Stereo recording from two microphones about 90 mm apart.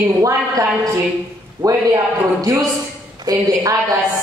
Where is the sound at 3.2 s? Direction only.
45° right (ahead or behind).